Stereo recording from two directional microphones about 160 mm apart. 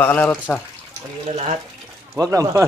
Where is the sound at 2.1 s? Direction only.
20° right (ahead or behind).